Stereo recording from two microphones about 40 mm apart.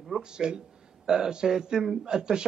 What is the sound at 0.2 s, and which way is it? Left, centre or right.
A man's voice, right.